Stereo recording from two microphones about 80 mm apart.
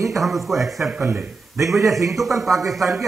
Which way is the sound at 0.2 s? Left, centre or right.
Centre.